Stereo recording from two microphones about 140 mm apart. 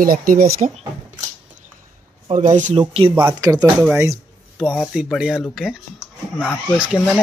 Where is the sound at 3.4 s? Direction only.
25° right (ahead or behind).